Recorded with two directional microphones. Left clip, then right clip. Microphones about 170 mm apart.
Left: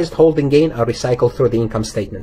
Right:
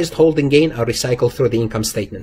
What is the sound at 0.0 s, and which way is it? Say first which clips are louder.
A man's voice: left 1 dB; 30° right (ahead or behind).